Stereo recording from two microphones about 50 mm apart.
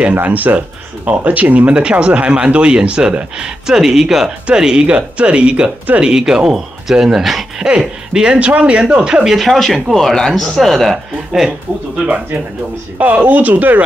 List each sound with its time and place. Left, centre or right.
0.0 s speech: right; by 7.6 s centre
8.1 s speech: centre
9.2 s speech: centre
13.0 s speech: right